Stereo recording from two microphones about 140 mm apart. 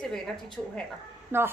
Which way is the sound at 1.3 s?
15° right (ahead or behind).